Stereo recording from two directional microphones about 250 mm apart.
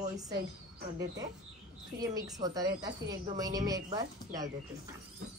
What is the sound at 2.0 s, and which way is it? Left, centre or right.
A woman's voice, centre.